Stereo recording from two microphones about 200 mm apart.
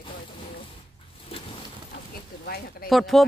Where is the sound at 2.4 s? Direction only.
50° left (ahead or behind).